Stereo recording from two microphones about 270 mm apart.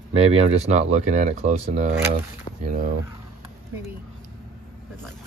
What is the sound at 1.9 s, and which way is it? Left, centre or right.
Speech, centre.